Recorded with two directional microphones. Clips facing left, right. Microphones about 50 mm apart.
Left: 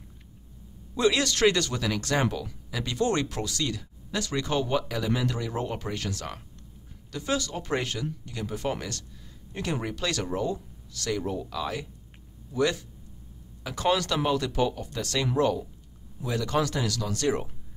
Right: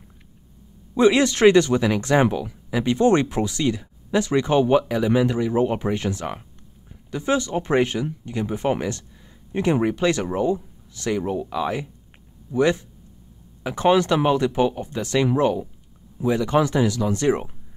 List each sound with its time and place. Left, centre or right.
0.9 s a man's voice: right